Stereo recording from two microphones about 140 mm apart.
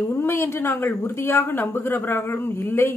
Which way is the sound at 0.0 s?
15° left (ahead or behind).